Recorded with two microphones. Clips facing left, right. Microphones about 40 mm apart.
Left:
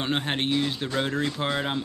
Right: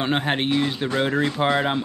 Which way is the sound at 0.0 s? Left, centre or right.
Centre.